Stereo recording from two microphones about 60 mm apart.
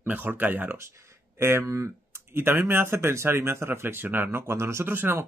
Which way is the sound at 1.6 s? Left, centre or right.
Right.